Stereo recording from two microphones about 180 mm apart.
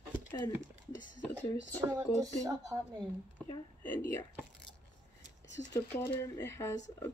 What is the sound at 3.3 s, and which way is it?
Hiccup, 10° left (ahead or behind).